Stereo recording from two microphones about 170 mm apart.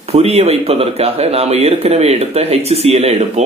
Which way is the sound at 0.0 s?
35° right (ahead or behind).